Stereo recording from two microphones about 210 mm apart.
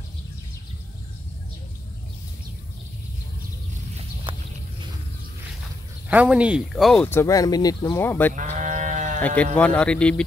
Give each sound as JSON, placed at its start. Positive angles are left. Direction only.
{"t": 3.9, "sound": "a sound", "side_deg": -25}
{"t": 6.0, "sound": "speech", "side_deg": -5}
{"t": 8.4, "sound": "sheep", "side_deg": -35}
{"t": 9.6, "sound": "speech", "side_deg": 5}